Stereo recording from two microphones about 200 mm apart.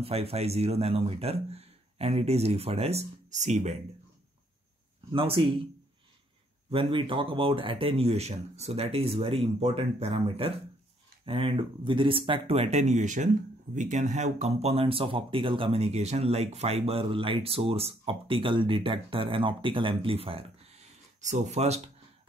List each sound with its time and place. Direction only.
0.0 s speech: 30° right (ahead or behind)
5.1 s speech: 30° right (ahead or behind)
6.7 s speech: 25° right (ahead or behind)